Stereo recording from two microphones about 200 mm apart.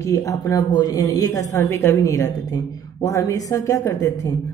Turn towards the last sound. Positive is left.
turn(degrees=15)  # may be behind; listen again after turning